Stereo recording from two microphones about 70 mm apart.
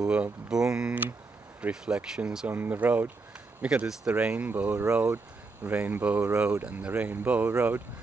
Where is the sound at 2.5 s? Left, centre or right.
Right.